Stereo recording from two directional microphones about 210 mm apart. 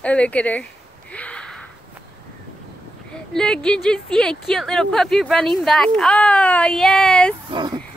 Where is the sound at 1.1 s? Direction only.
5° left (ahead or behind).